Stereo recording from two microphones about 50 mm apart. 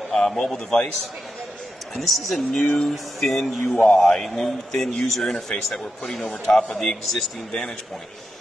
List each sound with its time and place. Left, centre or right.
0.1 s a man's voice: centre
2.0 s speech: centre
2.5 s a man's voice: centre
3.2 s a man's voice: centre